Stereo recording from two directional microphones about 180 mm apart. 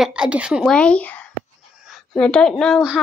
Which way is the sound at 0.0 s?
5° right (ahead or behind).